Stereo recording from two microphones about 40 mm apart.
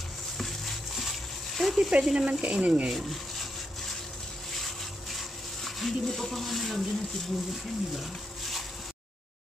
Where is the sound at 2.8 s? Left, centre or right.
Centre.